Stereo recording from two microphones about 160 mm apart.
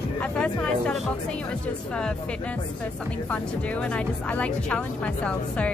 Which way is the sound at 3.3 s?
10° left (ahead or behind).